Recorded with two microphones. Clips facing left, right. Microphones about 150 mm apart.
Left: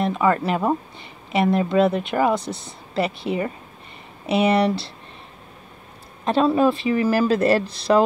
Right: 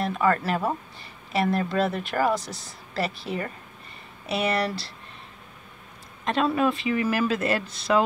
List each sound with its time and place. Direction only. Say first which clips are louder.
0.0 s speech: left 4 dB; 20° left (ahead or behind)
4.5 s speech: left 7 dB; 25° left (ahead or behind)
6.2 s speech: left 5 dB; 30° left (ahead or behind)